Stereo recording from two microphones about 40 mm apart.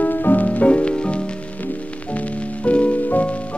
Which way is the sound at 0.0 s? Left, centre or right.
Left.